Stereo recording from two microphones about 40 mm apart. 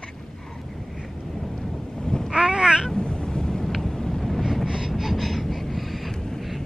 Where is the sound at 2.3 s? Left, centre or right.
Right.